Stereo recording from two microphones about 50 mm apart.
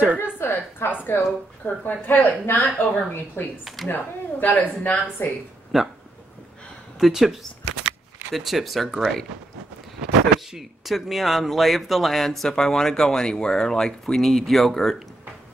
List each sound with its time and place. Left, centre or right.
0.2 s a sound: left
1.0 s a woman's voice: left
3.6 s speech: centre
3.9 s a woman's voice: left
5.7 s speech: centre
7.0 s speech: centre
10.3 s speech: centre
10.9 s speech: centre